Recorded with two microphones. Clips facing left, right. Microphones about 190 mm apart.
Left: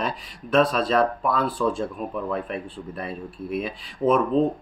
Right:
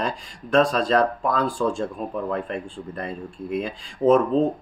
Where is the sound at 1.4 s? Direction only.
45° right (ahead or behind).